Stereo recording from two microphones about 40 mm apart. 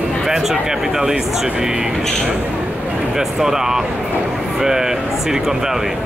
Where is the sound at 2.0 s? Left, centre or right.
Centre.